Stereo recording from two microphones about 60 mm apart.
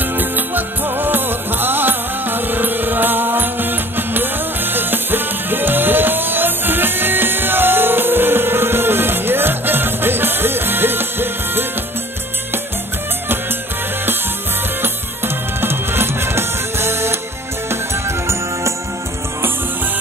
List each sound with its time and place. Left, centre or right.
0.0 s music: right
14.8 s music: right